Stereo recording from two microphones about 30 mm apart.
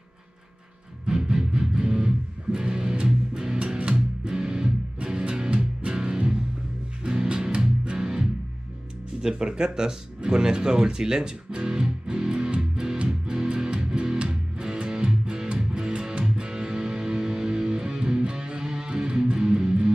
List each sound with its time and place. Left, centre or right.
1.0 s music: right
4.9 s music: right
8.0 s music: right
9.2 s speech: right
12.7 s music: right